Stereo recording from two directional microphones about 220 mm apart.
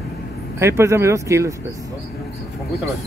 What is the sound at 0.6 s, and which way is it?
Speech, 10° right (ahead or behind).